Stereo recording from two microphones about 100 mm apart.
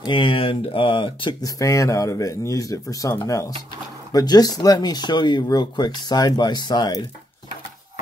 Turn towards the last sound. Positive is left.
turn(degrees=40)  # may be behind; listen again after turning